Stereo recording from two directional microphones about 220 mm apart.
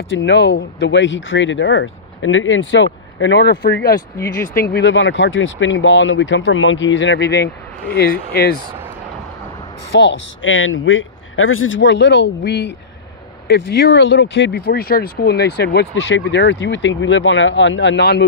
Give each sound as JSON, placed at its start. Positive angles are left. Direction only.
{"t": 0.1, "sound": "speech", "side_deg": 50}
{"t": 9.9, "sound": "speech", "side_deg": 55}